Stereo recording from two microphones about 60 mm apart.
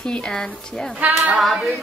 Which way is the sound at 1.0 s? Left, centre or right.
Right.